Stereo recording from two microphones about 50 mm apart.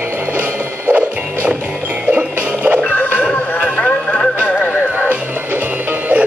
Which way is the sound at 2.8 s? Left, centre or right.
Left.